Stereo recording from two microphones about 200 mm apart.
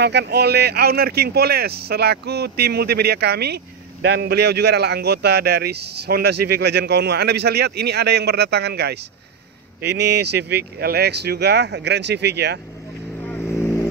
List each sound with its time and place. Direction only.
0.0 s speech: 55° right (ahead or behind)
13.4 s vehicle: 15° left (ahead or behind)